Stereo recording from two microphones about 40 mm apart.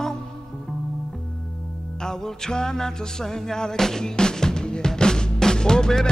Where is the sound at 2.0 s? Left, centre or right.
Centre.